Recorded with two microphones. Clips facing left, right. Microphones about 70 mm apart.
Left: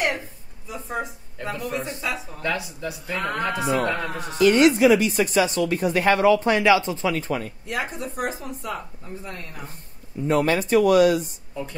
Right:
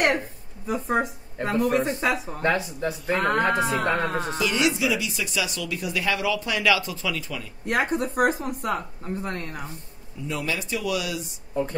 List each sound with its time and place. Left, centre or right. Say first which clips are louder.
0.7 s speech: right 6 dB; right
2.4 s speech: right 3 dB; right
4.4 s speech: left 10 dB; left
6.6 s speech: left 5 dB; left
7.6 s speech: right 5 dB; right
10.2 s speech: left 9 dB; left